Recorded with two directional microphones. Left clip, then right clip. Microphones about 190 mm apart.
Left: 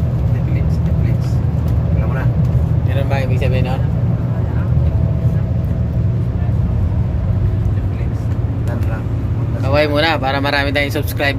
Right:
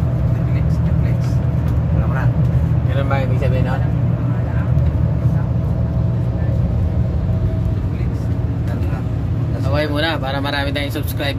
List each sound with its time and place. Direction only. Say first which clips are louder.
9.7 s speech: left 5 dB; 15° left (ahead or behind)